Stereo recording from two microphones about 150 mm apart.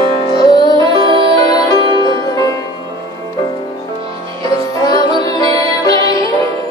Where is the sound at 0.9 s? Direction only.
35° right (ahead or behind).